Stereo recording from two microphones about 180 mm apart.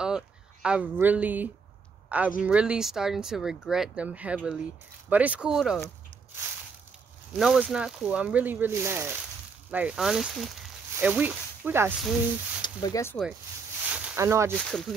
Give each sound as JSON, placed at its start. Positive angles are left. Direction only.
{"t": 0.0, "sound": "speech", "side_deg": -5}
{"t": 7.3, "sound": "speech", "side_deg": 0}
{"t": 12.6, "sound": "speech", "side_deg": 20}
{"t": 13.9, "sound": "a sound", "side_deg": -15}
{"t": 14.6, "sound": "speech", "side_deg": 0}